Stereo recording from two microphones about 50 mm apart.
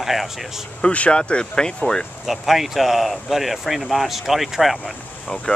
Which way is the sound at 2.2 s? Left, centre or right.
Centre.